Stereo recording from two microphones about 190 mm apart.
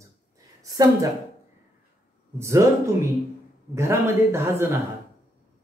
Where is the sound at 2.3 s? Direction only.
15° right (ahead or behind).